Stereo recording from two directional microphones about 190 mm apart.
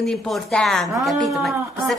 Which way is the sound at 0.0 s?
Centre (ahead or behind).